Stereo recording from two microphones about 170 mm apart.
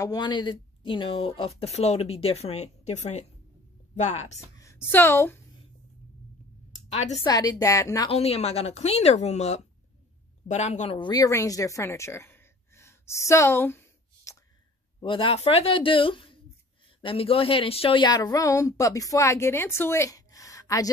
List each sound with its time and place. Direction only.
0.0 s speech: 25° left (ahead or behind); by 4.4 s 40° left (ahead or behind)
4.6 s a woman's voice: 15° left (ahead or behind)
7.2 s a woman's voice: 20° left (ahead or behind)
8.1 s speech: 35° left (ahead or behind)
11.0 s a woman's voice: 25° left (ahead or behind)
15.0 s a woman's voice: 30° left (ahead or behind)